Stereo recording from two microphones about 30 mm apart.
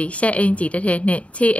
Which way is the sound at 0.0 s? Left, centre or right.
Left.